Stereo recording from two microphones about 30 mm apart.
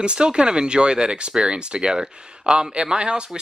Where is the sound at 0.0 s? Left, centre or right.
Right.